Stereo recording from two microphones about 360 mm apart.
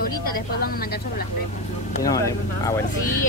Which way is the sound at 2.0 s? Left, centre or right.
Centre.